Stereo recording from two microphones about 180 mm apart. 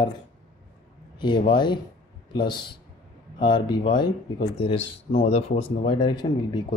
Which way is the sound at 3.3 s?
25° left (ahead or behind).